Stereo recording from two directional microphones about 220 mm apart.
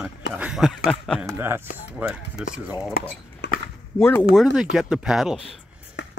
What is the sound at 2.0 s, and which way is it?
Speech, 5° right (ahead or behind).